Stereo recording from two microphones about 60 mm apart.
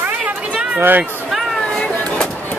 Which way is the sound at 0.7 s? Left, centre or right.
Right.